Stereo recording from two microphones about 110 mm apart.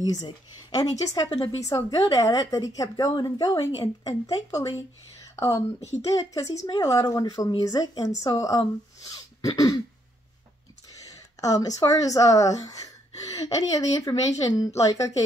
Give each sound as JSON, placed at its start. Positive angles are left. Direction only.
{"t": 0.7, "sound": "a woman's voice", "side_deg": 35}
{"t": 11.1, "sound": "a woman's voice", "side_deg": 35}